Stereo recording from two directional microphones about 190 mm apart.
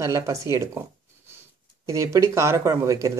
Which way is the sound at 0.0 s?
15° right (ahead or behind).